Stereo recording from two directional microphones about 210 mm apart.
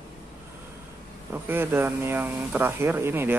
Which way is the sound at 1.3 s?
10° right (ahead or behind).